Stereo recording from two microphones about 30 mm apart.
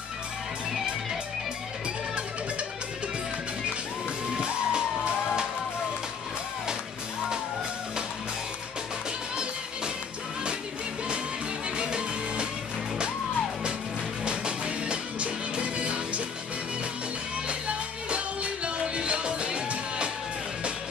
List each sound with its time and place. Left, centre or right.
4.3 s music: right
11.7 s music: right
14.2 s music: right
17.5 s music: right